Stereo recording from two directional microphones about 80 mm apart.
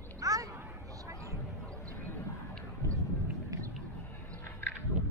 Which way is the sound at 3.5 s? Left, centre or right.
Right.